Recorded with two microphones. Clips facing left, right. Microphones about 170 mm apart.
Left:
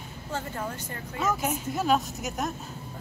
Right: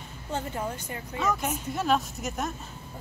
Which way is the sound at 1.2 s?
Centre (ahead or behind).